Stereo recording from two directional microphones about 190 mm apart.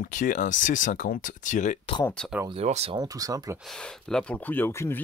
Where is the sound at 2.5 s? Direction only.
35° right (ahead or behind).